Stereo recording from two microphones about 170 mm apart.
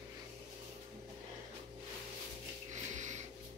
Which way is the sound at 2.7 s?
45° right (ahead or behind).